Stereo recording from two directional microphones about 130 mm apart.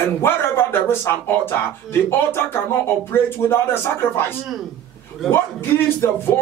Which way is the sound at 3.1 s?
15° left (ahead or behind).